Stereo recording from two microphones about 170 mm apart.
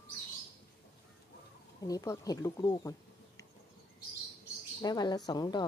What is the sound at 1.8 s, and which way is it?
Speech, 20° left (ahead or behind).